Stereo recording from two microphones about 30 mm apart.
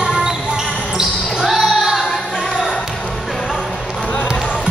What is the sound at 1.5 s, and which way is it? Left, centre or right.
Music, centre.